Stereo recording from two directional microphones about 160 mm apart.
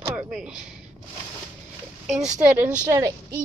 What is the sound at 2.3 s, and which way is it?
Speech, 50° right (ahead or behind).